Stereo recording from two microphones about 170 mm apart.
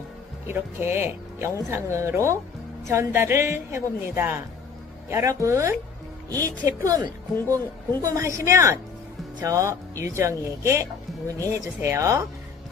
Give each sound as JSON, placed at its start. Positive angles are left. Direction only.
{"t": 0.5, "sound": "speech", "side_deg": -15}
{"t": 6.8, "sound": "speech", "side_deg": -20}